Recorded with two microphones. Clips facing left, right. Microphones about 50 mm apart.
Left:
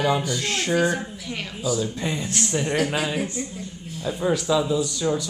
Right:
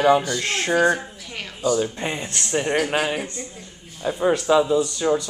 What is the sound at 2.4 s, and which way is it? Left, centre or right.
Speech, right.